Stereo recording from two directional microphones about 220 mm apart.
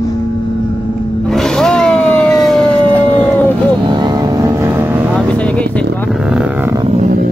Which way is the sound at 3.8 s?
20° right (ahead or behind).